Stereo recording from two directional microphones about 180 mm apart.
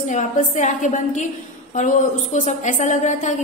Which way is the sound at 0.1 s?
45° left (ahead or behind).